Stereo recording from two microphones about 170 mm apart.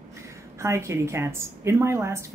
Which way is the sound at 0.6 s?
15° right (ahead or behind).